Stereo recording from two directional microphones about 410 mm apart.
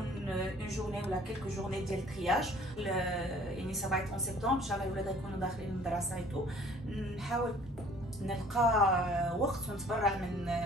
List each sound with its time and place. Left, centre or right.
0.3 s a sound: centre
1.7 s a woman's voice: centre
7.3 s a woman's voice: centre